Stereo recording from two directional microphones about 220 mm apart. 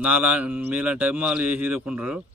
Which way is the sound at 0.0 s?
5° right (ahead or behind).